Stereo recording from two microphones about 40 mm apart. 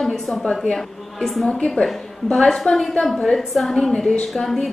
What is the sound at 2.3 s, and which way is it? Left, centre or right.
A woman's voice, centre.